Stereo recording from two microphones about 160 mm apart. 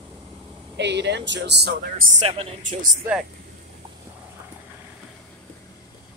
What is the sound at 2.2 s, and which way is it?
Speech, 35° right (ahead or behind).